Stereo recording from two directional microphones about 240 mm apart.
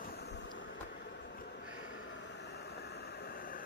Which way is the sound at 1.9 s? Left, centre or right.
Left.